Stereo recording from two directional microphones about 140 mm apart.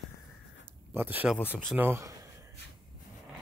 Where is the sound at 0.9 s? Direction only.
15° right (ahead or behind).